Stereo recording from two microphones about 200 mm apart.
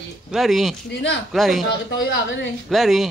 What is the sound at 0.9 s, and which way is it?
Speech, 60° left (ahead or behind).